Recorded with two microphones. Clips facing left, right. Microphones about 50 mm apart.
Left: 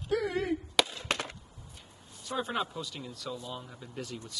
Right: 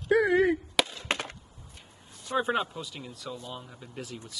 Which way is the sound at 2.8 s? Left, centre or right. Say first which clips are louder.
Even; centre.